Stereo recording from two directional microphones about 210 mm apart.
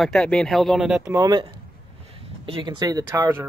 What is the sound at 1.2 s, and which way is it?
Speech, 20° right (ahead or behind).